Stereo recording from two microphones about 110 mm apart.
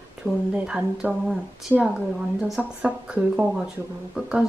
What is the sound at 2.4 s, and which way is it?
Speech, 5° right (ahead or behind).